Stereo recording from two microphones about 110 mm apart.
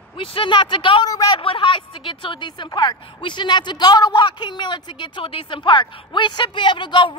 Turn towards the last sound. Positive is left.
turn(degrees=45)  # may be behind; listen again after turning